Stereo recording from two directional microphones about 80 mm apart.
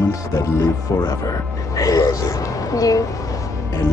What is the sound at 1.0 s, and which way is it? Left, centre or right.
Music, left.